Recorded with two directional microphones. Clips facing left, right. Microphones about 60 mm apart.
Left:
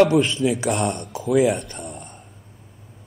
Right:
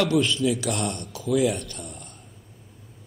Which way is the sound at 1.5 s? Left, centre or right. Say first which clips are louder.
Left 5 dB; left.